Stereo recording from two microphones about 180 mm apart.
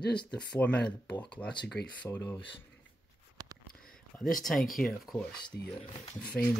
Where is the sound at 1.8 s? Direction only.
65° left (ahead or behind).